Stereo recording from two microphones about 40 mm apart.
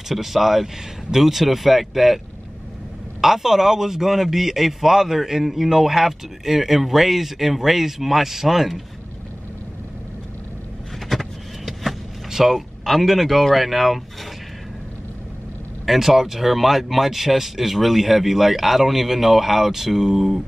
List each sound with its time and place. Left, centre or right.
0.1 s a man's voice: centre
3.2 s a man's voice: centre
11.1 s vehicle: centre
12.3 s a sound: centre
12.5 s speech: centre
15.8 s speech: centre